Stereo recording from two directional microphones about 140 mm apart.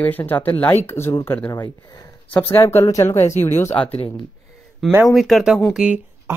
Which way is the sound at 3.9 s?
40° left (ahead or behind).